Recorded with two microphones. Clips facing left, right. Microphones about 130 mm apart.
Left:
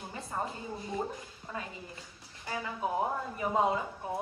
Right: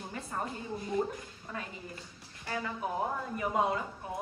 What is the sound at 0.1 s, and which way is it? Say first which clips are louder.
Speech: left 1 dB; 25° left (ahead or behind).